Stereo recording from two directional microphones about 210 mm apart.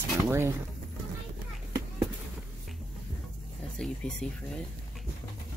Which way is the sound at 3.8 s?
5° left (ahead or behind).